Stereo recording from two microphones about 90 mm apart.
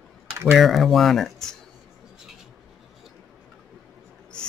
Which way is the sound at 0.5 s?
Centre (ahead or behind).